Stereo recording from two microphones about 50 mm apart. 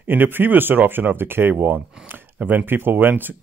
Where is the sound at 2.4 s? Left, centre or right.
Right.